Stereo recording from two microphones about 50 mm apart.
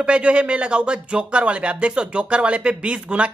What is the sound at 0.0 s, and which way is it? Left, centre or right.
Speech, right.